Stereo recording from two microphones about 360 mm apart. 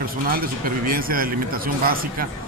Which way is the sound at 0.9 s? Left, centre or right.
Right.